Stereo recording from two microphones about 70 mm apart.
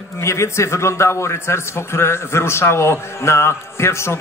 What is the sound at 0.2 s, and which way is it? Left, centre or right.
A man's voice, left.